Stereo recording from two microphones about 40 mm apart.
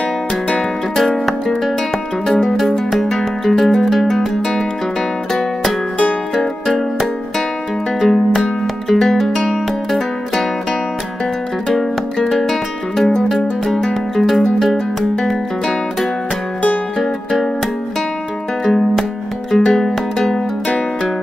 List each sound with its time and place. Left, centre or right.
0.6 s music: centre
2.2 s music: centre
2.5 s music: centre
8.0 s music: centre
12.3 s music: centre
14.1 s music: centre
17.0 s music: centre
18.7 s music: centre
20.6 s music: left